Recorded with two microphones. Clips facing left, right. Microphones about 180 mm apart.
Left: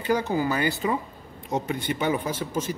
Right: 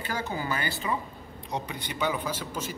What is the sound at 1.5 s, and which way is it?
A man's voice, 50° left (ahead or behind).